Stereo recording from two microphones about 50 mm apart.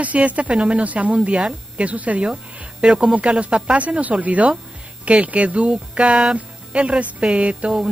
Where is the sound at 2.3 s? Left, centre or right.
Centre.